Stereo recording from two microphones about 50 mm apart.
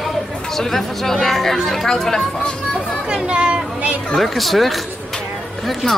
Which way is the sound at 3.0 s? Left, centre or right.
Centre.